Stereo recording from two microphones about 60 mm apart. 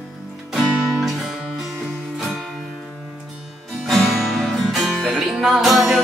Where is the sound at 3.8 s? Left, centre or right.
Centre.